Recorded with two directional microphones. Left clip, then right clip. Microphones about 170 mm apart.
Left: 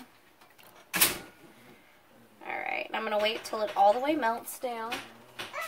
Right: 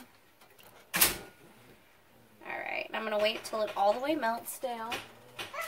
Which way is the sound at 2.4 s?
20° left (ahead or behind).